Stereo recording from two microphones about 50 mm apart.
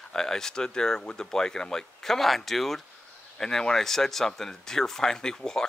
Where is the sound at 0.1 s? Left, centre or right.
Centre.